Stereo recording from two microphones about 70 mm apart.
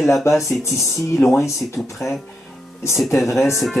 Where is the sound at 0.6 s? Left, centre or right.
Left.